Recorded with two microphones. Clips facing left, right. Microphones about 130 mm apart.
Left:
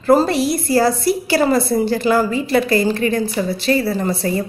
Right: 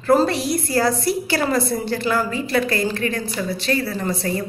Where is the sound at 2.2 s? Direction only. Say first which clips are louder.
Left 4 dB; 15° left (ahead or behind).